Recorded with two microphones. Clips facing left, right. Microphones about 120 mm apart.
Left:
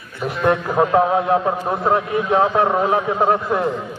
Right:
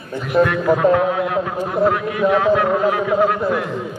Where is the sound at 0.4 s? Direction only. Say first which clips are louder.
Right 3 dB; 40° right (ahead or behind).